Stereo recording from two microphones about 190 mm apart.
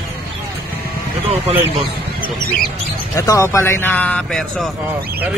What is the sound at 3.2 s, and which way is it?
Speech, 15° left (ahead or behind).